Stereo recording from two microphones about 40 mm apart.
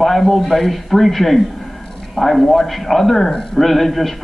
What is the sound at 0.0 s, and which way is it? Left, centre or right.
A man's voice, centre.